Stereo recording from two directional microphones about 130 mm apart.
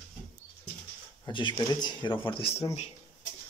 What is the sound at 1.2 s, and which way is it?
Speech, 35° left (ahead or behind).